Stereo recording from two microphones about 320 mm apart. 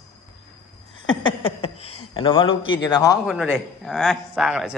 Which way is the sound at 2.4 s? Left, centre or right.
Left.